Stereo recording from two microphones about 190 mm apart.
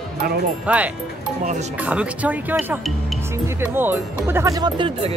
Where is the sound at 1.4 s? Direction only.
40° right (ahead or behind).